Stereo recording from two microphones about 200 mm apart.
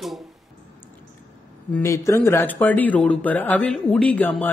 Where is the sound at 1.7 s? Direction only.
15° left (ahead or behind).